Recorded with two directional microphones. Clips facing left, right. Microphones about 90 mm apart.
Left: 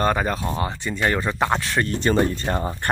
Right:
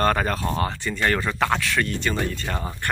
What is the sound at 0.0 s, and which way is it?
Speech, 15° left (ahead or behind).